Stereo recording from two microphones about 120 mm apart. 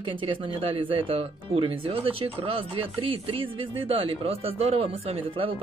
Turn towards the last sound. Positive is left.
turn(degrees=-50)  # may be behind; listen again after turning